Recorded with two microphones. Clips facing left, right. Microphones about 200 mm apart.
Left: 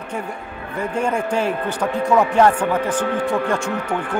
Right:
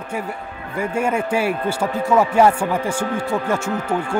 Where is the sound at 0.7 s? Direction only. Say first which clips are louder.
Right 1 dB; 10° right (ahead or behind).